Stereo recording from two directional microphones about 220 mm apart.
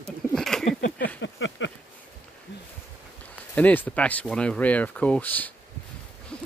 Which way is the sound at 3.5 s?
5° left (ahead or behind).